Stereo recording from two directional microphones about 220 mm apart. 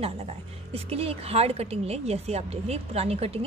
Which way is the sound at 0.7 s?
25° right (ahead or behind).